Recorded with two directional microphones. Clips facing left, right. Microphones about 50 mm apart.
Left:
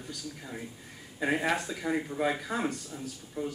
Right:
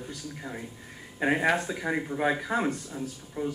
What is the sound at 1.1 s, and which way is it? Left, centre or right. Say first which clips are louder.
Speech: right 4 dB; right.